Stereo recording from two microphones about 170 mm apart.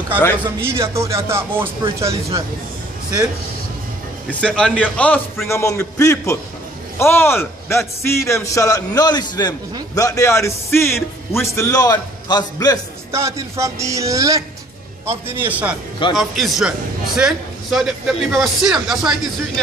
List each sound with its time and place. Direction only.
0.6 s speech: 15° right (ahead or behind)
4.3 s a man's voice: 5° left (ahead or behind)
11.0 s speech: centre (ahead or behind)
11.5 s a man's voice: 20° left (ahead or behind)
13.1 s a man's voice: 15° right (ahead or behind)